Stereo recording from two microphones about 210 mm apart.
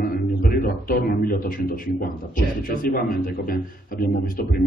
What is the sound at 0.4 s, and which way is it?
A man's voice, 40° left (ahead or behind).